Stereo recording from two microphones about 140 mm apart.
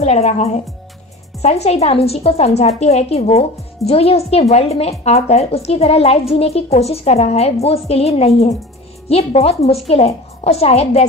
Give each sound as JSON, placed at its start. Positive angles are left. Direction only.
{"t": 0.0, "sound": "speech", "side_deg": 50}